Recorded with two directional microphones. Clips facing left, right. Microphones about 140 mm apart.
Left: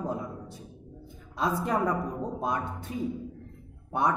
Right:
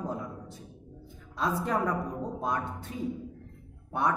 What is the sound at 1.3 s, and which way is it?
A man's voice, 15° left (ahead or behind).